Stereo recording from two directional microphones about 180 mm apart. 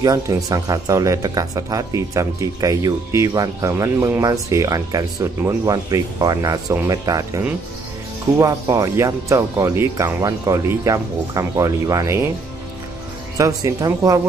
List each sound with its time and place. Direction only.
0.0 s speech: 20° right (ahead or behind)
13.4 s speech: 20° right (ahead or behind)